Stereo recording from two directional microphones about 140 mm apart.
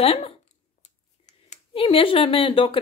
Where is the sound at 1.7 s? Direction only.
40° left (ahead or behind).